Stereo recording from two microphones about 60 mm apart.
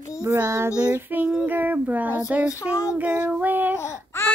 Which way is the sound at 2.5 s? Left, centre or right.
Left.